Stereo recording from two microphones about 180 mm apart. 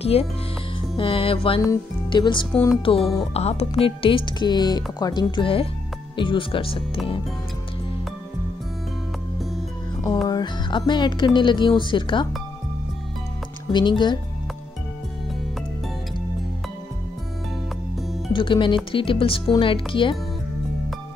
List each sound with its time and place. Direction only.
0.0 s speech: 35° left (ahead or behind)
10.2 s speech: 25° left (ahead or behind)
13.7 s speech: 25° left (ahead or behind)
18.3 s speech: 25° left (ahead or behind)